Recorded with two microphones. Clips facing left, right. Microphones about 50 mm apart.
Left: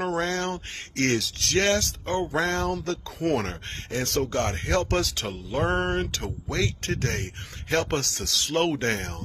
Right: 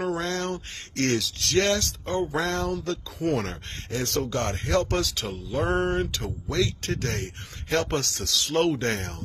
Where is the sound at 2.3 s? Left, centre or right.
Left.